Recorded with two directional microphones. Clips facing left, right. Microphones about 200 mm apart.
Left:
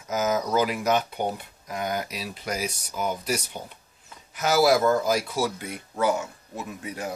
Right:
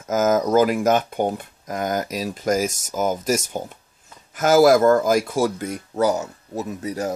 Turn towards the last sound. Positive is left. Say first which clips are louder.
# right 7 dB
turn(degrees=-40)  # may be behind; listen again after turning